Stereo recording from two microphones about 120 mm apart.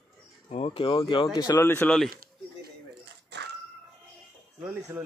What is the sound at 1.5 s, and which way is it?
Speech, 20° left (ahead or behind).